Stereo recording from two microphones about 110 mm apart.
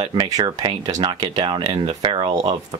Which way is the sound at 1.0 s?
45° right (ahead or behind).